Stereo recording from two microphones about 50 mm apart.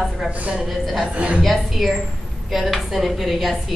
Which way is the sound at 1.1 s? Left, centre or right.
Right.